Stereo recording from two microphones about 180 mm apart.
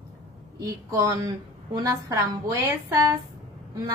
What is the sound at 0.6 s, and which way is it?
A woman's voice, 20° right (ahead or behind).